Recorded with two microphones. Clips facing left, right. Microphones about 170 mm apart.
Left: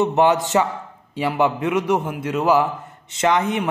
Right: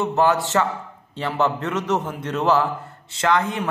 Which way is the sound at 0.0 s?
20° left (ahead or behind).